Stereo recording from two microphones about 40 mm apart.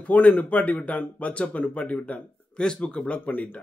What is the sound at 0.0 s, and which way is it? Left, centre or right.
A man's voice, left.